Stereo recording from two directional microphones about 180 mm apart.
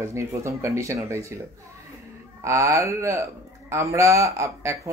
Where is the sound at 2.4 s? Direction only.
15° right (ahead or behind).